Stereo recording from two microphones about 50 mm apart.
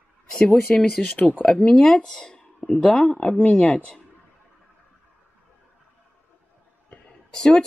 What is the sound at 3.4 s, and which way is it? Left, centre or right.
Speech, left.